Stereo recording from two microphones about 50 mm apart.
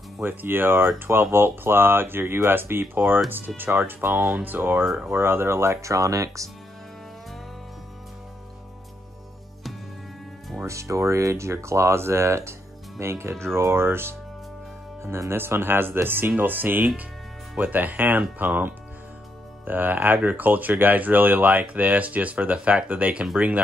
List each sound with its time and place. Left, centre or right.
0.2 s speech: right
10.6 s speech: right